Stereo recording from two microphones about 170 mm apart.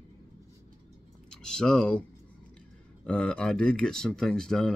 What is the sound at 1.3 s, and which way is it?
Speech, 5° left (ahead or behind).